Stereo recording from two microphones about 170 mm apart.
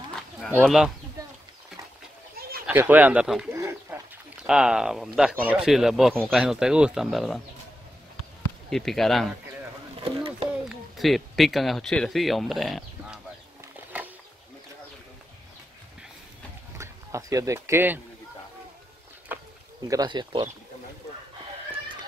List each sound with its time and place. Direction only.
0.6 s speech: centre (ahead or behind)
2.6 s speech: 10° right (ahead or behind)
3.5 s bird: 15° right (ahead or behind)
4.4 s speech: 5° right (ahead or behind)
8.6 s speech: centre (ahead or behind)
10.0 s a sound: 35° right (ahead or behind)
10.7 s speech: centre (ahead or behind)
13.9 s a sound: 10° right (ahead or behind)
16.7 s speech: 15° right (ahead or behind)
19.3 s a sound: 10° right (ahead or behind)
19.9 s speech: 25° right (ahead or behind)